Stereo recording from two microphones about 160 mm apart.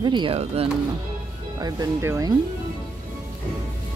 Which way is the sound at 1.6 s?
20° right (ahead or behind).